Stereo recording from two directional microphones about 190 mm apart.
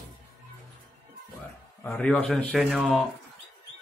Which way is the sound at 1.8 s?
10° left (ahead or behind).